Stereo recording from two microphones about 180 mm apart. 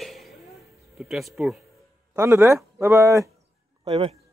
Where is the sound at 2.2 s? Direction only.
15° right (ahead or behind).